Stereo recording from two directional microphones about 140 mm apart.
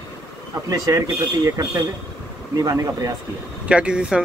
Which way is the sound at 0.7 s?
25° right (ahead or behind).